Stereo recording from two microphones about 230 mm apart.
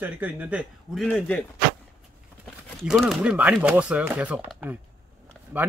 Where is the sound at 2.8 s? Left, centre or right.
Centre.